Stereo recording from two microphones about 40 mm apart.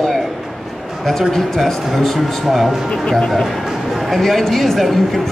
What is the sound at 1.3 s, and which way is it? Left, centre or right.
Speech, centre.